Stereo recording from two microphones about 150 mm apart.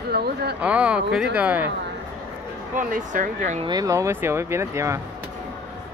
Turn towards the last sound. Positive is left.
turn(degrees=-20)  # may be behind; listen again after turning